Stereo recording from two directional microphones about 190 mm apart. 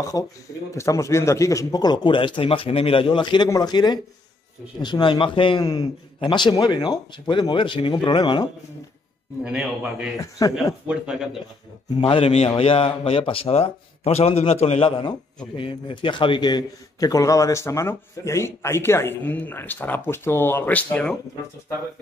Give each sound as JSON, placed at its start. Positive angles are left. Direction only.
{"t": 0.1, "sound": "a man's voice", "side_deg": 20}
{"t": 9.4, "sound": "a man's voice", "side_deg": -5}
{"t": 12.0, "sound": "a man's voice", "side_deg": 30}